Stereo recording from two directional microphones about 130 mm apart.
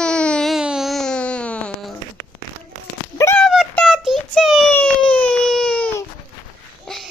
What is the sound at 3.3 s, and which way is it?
Child singing, centre (ahead or behind).